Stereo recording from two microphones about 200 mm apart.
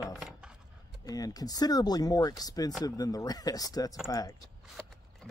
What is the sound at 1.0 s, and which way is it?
Speech, 20° left (ahead or behind).